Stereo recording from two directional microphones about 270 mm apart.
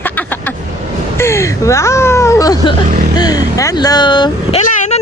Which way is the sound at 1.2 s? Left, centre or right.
Centre.